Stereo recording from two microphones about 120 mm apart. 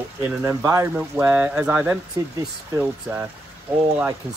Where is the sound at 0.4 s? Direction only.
25° right (ahead or behind).